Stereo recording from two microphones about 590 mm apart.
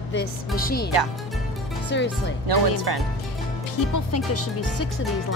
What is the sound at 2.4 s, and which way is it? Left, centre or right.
Speech, right.